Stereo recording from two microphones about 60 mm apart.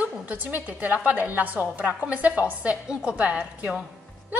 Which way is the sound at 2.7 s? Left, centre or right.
Centre.